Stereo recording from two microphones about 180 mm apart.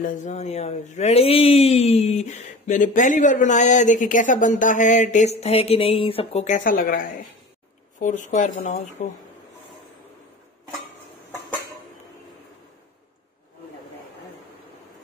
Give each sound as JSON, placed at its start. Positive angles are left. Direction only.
{"t": 0.0, "sound": "speech", "side_deg": 40}
{"t": 8.0, "sound": "speech", "side_deg": 45}